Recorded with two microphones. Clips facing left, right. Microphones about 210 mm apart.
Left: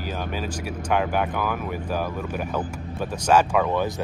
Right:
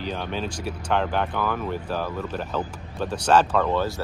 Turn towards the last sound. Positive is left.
turn(degrees=10)  # may be behind; listen again after turning